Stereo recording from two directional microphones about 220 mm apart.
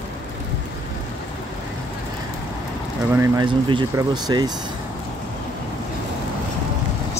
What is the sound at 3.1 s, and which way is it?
Speech, 15° right (ahead or behind).